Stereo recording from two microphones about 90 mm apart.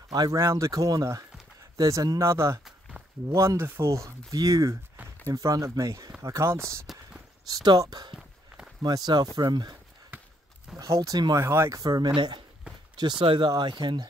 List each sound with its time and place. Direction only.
0.1 s speech: 50° right (ahead or behind)
0.4 s speech: 35° right (ahead or behind)
7.4 s speech: 50° right (ahead or behind)
10.8 s speech: 40° right (ahead or behind)
11.3 s speech: 30° right (ahead or behind)
11.8 s speech: 45° right (ahead or behind)
12.2 s speech: 60° right (ahead or behind)
13.5 s speech: 55° right (ahead or behind)